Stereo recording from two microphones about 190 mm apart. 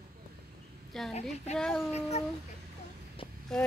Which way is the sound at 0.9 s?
Centre (ahead or behind).